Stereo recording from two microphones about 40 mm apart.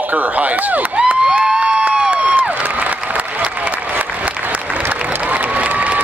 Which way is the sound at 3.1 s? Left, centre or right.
Right.